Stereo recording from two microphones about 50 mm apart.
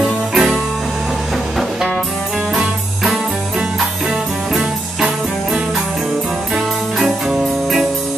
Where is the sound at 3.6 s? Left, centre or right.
Centre.